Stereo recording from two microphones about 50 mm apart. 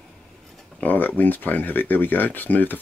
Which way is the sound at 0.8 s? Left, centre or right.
Left.